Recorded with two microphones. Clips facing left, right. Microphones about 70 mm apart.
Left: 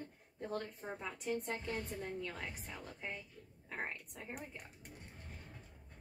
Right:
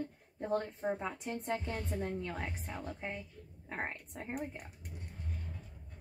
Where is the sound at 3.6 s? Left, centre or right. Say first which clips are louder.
Right 3 dB; right.